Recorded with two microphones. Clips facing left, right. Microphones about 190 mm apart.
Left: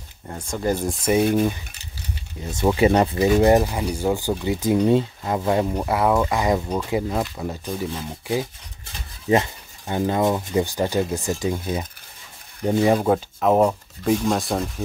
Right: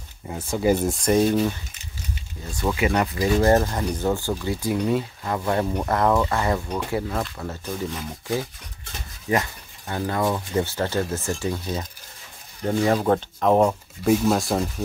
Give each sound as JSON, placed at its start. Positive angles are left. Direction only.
{"t": 0.3, "sound": "speech", "side_deg": -5}
{"t": 2.4, "sound": "speech", "side_deg": 25}